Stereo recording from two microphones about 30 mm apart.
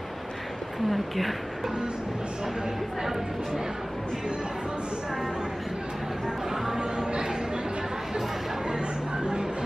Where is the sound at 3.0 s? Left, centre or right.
Centre.